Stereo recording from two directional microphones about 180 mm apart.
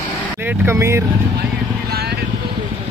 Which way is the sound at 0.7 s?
15° right (ahead or behind).